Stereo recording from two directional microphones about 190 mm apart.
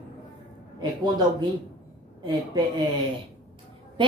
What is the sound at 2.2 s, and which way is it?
Speech, 25° right (ahead or behind).